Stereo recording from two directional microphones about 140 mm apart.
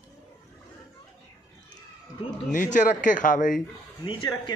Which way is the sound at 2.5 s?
65° left (ahead or behind).